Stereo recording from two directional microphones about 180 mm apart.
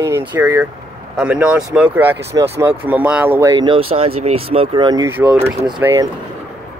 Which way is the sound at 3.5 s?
25° right (ahead or behind).